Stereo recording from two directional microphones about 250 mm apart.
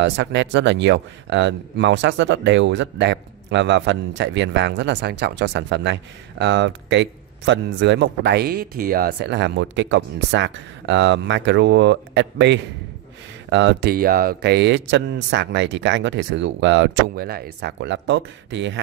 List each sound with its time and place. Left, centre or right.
0.0 s speech: right